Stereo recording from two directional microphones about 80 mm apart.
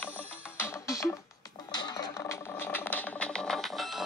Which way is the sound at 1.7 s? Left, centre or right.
Left.